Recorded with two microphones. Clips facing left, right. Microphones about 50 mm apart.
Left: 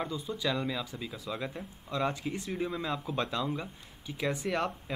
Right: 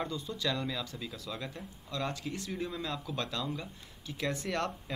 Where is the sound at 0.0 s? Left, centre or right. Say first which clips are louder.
Left 2 dB; centre.